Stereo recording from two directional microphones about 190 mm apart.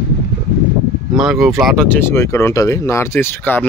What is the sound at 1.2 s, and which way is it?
Speech, centre (ahead or behind).